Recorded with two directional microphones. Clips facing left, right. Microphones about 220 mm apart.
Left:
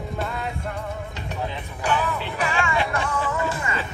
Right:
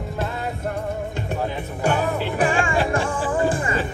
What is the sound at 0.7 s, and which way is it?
Music, 50° right (ahead or behind).